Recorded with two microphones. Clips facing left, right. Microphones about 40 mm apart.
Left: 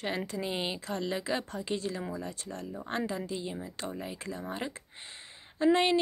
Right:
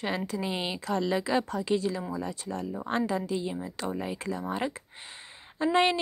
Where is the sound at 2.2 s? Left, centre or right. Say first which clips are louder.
Right 5 dB; right.